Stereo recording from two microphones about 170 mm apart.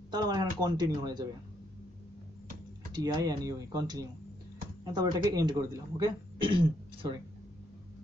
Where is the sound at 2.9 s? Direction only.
20° right (ahead or behind).